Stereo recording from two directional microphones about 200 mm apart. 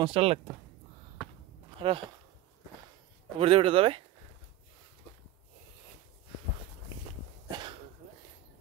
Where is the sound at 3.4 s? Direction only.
25° right (ahead or behind).